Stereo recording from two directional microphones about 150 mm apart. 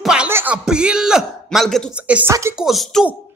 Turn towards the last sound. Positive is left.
turn(degrees=0)  # may be behind; listen again after turning